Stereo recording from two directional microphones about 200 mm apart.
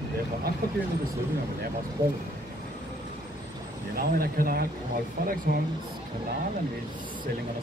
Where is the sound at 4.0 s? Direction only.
45° right (ahead or behind).